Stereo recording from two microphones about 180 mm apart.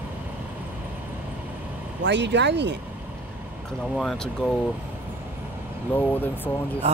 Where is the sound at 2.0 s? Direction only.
80° right.